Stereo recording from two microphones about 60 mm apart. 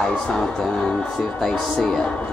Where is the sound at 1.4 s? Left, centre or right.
Centre.